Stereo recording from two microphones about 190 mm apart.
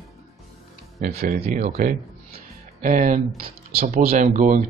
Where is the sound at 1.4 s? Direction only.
35° right (ahead or behind).